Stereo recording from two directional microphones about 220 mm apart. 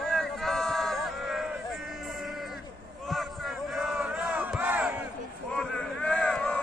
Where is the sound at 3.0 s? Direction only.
Centre (ahead or behind).